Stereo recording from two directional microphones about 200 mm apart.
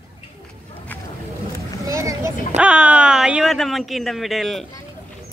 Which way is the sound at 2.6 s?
5° right (ahead or behind).